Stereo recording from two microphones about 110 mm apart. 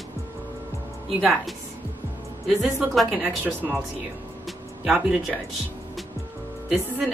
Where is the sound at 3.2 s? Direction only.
15° right (ahead or behind).